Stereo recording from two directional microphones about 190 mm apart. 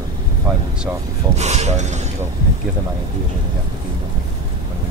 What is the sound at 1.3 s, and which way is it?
Speech, 35° right (ahead or behind).